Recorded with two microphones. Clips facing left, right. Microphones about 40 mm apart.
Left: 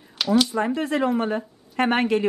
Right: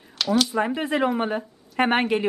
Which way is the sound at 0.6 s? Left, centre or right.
Centre.